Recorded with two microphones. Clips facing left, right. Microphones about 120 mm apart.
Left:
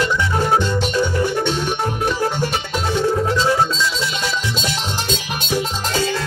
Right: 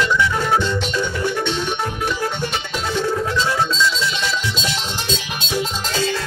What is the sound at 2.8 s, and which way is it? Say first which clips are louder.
Music: left 3 dB; 35° left (ahead or behind).